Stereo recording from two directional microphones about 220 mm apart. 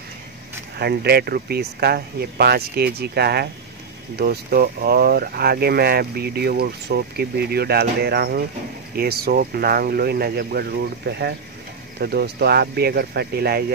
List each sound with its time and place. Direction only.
0.7 s speech: 45° right (ahead or behind)